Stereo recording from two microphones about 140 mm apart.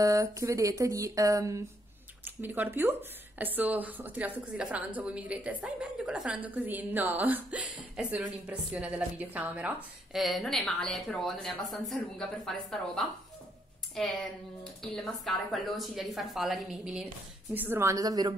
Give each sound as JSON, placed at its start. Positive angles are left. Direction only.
{"t": 0.0, "sound": "a woman's voice", "side_deg": -25}
{"t": 10.1, "sound": "a woman's voice", "side_deg": 0}
{"t": 17.6, "sound": "speech", "side_deg": -15}